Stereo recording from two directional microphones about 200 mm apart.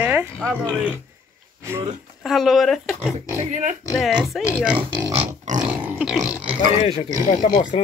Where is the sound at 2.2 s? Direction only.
Centre (ahead or behind).